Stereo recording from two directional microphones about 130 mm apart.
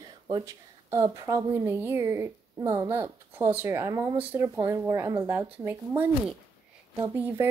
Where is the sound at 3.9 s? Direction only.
25° right (ahead or behind).